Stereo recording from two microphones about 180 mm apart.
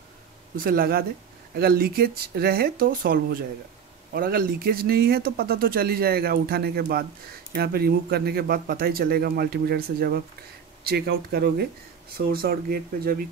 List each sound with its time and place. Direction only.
0.6 s speech: 55° right (ahead or behind)